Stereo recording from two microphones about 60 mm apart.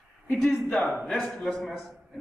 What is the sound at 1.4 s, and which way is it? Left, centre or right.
Speech, centre.